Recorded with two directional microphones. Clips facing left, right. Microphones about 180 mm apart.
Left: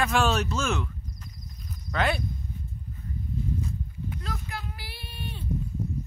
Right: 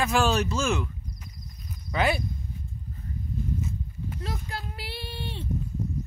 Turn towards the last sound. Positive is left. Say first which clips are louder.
# right 3 dB
turn(degrees=-30)  # may be behind; listen again after turning